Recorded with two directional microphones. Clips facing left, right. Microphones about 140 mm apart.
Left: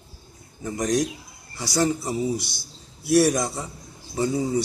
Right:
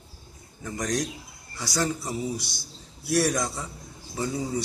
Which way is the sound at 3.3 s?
20° left (ahead or behind).